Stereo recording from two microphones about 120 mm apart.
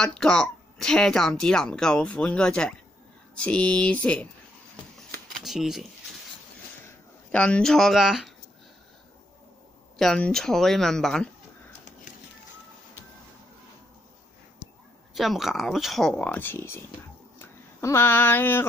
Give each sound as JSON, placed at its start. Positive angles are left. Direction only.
{"t": 0.0, "sound": "speech", "side_deg": 5}
{"t": 5.4, "sound": "speech", "side_deg": 0}
{"t": 7.2, "sound": "speech", "side_deg": 10}
{"t": 9.9, "sound": "speech", "side_deg": 5}
{"t": 15.1, "sound": "speech", "side_deg": 0}
{"t": 16.3, "sound": "speech", "side_deg": 15}